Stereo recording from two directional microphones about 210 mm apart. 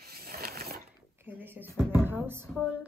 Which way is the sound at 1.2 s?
10° right (ahead or behind).